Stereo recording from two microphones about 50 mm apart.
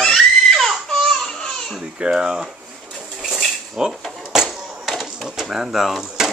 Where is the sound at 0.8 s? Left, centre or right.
Centre.